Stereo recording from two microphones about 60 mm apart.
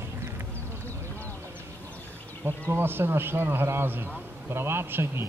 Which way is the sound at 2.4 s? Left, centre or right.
Right.